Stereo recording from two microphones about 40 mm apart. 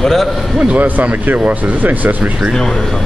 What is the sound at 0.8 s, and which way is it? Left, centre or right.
Speech, right.